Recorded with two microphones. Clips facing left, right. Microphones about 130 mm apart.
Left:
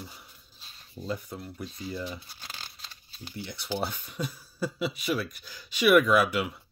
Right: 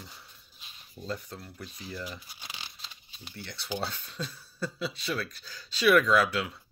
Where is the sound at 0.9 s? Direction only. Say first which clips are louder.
Left 3 dB; 10° left (ahead or behind).